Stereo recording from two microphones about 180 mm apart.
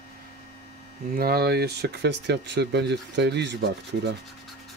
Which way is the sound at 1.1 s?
60° right (ahead or behind).